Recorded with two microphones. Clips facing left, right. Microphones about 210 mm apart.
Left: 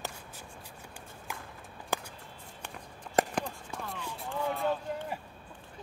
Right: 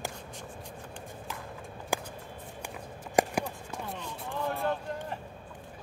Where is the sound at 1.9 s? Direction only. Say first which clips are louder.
Right 2 dB; 10° right (ahead or behind).